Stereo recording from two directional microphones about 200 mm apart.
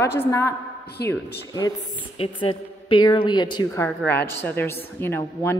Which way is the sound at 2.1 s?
25° left (ahead or behind).